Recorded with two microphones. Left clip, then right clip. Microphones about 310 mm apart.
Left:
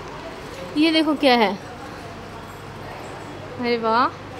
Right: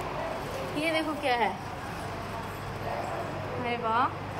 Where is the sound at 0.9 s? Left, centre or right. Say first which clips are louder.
Left 10 dB; centre.